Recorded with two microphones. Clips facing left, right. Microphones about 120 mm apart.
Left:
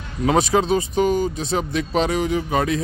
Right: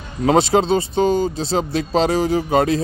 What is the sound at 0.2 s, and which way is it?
Speech, 35° right (ahead or behind).